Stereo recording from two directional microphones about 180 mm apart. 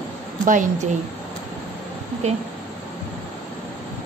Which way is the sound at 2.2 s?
40° right (ahead or behind).